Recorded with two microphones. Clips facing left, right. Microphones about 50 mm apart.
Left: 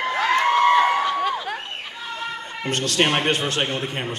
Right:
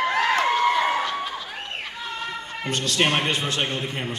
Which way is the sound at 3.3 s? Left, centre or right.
Left.